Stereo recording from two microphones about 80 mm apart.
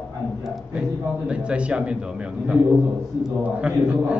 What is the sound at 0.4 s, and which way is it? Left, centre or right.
A man's voice, centre.